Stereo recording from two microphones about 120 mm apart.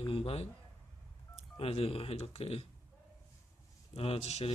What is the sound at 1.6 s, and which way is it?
Speech, 55° left (ahead or behind).